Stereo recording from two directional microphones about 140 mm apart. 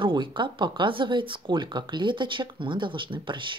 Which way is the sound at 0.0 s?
35° right (ahead or behind).